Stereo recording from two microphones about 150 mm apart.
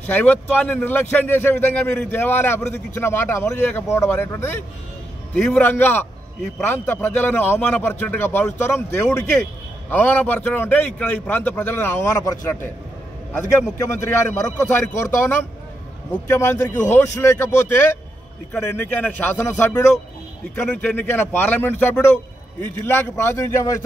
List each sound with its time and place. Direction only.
0.0 s a man's voice: 10° left (ahead or behind)
14.3 s a man's voice: 20° left (ahead or behind)